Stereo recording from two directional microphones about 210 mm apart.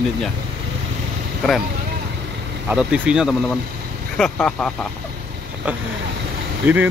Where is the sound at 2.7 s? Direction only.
5° right (ahead or behind).